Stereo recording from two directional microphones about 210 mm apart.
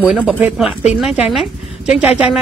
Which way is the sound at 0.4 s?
5° right (ahead or behind).